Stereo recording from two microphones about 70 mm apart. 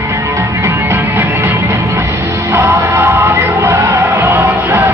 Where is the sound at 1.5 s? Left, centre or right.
Right.